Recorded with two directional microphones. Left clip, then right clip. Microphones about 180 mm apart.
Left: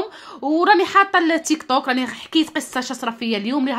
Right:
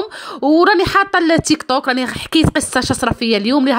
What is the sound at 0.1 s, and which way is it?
Speech, 35° right (ahead or behind).